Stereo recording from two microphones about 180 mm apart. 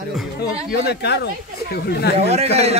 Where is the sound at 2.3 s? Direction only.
35° right (ahead or behind).